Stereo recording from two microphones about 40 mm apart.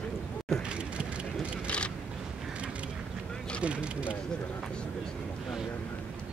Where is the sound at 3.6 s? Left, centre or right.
Right.